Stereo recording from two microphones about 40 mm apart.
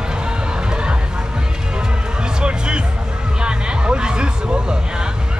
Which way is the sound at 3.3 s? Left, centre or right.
Right.